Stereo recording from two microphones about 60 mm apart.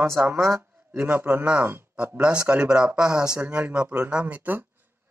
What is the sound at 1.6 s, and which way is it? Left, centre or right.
Speech, right.